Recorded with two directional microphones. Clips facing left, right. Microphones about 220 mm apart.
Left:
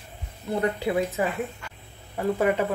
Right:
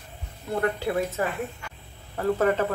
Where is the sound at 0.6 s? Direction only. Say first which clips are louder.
Left 1 dB; 15° left (ahead or behind).